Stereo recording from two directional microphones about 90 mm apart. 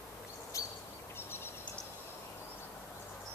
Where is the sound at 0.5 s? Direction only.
35° left (ahead or behind).